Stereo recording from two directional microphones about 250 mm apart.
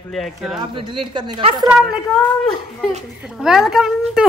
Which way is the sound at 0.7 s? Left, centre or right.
Centre.